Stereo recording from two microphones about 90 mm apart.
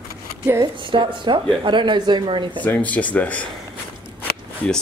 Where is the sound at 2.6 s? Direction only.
15° left (ahead or behind).